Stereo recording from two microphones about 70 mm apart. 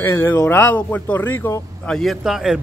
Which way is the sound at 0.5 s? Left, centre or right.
Left.